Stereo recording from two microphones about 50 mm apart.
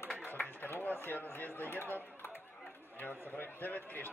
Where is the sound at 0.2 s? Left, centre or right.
Left.